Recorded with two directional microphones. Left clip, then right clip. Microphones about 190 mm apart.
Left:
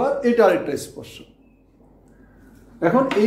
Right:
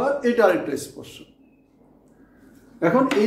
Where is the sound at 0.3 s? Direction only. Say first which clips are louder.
Left 3 dB; 20° left (ahead or behind).